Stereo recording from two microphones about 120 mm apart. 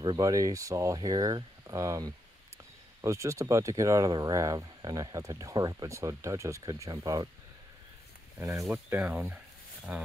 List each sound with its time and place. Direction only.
0.0 s speech: 35° right (ahead or behind)
8.4 s speech: 25° right (ahead or behind)
8.6 s speech: 10° right (ahead or behind)